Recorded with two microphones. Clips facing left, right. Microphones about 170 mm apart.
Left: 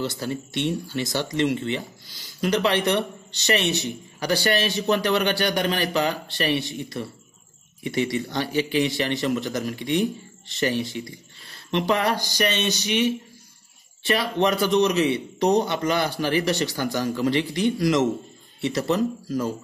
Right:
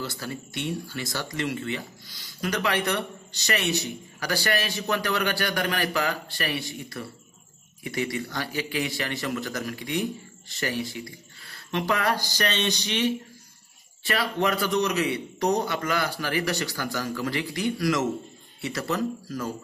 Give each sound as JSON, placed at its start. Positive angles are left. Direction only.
{"t": 0.0, "sound": "a man's voice", "side_deg": 25}
{"t": 14.0, "sound": "a man's voice", "side_deg": 20}